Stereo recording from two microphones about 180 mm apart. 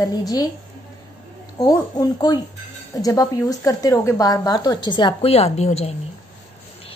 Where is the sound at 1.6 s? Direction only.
20° left (ahead or behind).